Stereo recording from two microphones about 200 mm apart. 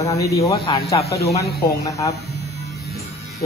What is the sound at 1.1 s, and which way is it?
Speech, 30° left (ahead or behind).